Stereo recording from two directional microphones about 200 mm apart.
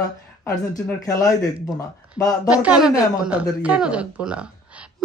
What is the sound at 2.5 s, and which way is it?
Speech, 5° right (ahead or behind).